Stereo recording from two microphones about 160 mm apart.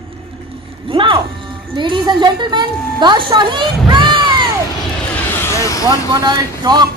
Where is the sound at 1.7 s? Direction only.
30° right (ahead or behind).